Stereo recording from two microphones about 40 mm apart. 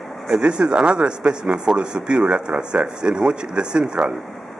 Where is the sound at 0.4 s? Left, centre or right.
Right.